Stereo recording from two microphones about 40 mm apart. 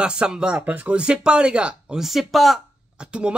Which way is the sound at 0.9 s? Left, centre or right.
Right.